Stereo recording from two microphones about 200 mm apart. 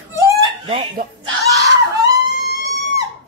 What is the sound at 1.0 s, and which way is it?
Speech, 45° right (ahead or behind).